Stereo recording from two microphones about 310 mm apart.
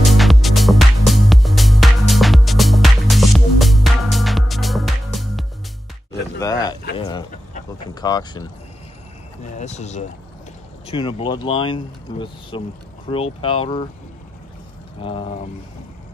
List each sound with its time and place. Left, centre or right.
0.0 s music: centre
6.4 s a sound: centre
7.0 s speech: centre
15.0 s speech: centre